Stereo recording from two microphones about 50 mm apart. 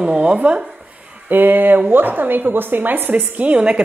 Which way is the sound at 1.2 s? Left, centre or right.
Right.